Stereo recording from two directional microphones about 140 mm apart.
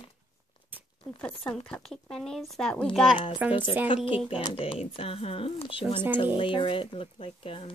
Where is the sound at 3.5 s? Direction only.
35° left (ahead or behind).